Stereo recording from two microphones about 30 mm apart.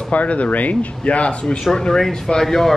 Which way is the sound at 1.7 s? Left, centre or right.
Left.